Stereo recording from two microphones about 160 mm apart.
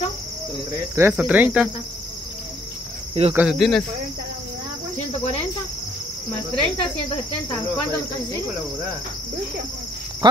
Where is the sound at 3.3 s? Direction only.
Centre (ahead or behind).